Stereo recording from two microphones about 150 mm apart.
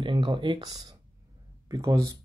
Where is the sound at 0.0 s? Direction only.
30° right (ahead or behind).